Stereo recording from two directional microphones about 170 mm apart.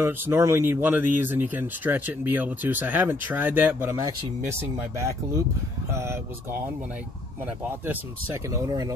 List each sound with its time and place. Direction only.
0.0 s speech: 15° right (ahead or behind)
5.9 s speech: 15° right (ahead or behind)